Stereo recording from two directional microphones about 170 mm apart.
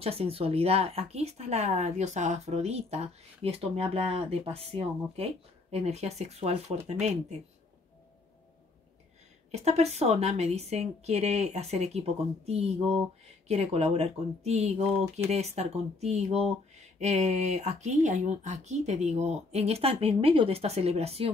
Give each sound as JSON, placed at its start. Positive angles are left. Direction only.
{"t": 0.0, "sound": "speech", "side_deg": -35}
{"t": 9.5, "sound": "speech", "side_deg": -40}